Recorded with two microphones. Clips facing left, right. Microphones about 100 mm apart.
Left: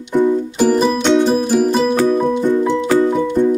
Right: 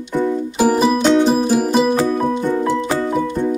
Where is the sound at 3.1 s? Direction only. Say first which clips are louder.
Left 4 dB; 5° right (ahead or behind).